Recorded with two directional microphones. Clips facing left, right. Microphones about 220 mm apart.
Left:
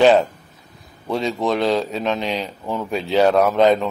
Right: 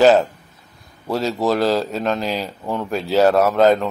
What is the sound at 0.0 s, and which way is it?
Speech, centre (ahead or behind).